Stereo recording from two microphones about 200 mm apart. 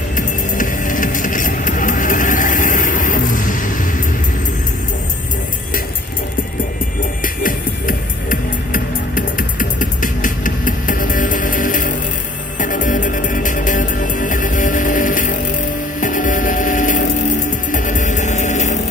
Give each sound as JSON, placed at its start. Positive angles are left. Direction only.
{"t": 0.6, "sound": "vehicle", "side_deg": 40}
{"t": 7.4, "sound": "music", "side_deg": 45}